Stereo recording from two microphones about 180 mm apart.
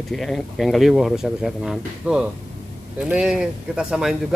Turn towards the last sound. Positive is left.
turn(degrees=-5)  # may be behind; listen again after turning